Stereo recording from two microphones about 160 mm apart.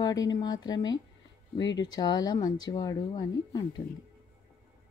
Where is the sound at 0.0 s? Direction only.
25° left (ahead or behind).